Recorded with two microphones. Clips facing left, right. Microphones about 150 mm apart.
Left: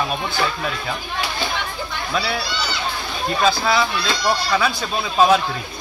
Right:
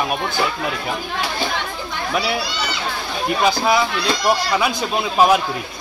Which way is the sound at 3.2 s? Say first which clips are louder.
Right 1 dB; 15° right (ahead or behind).